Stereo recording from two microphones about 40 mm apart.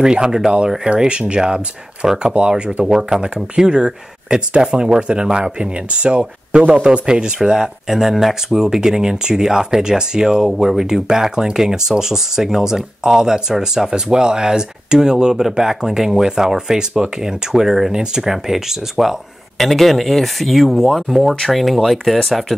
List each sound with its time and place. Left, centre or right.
0.0 s speech: centre
2.8 s speech: centre